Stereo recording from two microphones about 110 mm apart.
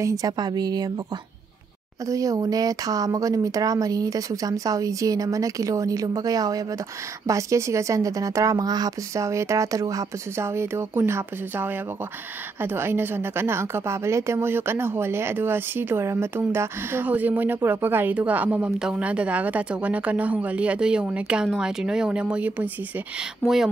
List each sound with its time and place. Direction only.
0.0 s speech: 30° right (ahead or behind)
2.0 s a woman's voice: 30° right (ahead or behind); by 23.7 s centre (ahead or behind)